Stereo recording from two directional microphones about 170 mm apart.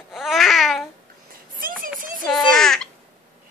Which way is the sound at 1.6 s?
55° right (ahead or behind).